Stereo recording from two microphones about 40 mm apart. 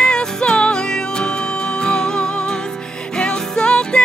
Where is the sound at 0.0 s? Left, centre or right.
Left.